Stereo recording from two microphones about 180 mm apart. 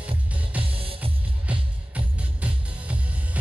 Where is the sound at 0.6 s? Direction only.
30° right (ahead or behind).